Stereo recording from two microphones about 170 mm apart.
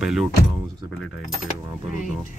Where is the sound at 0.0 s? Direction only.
Centre (ahead or behind).